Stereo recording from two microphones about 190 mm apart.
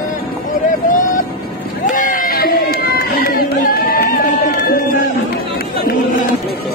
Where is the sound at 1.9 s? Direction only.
45° left (ahead or behind).